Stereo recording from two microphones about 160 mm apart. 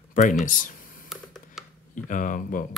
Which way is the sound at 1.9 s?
55° left (ahead or behind).